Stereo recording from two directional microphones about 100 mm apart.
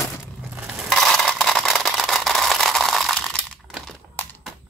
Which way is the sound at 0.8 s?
5° left (ahead or behind).